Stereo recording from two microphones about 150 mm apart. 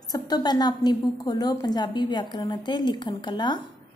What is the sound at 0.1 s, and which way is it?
A woman's voice, 25° left (ahead or behind).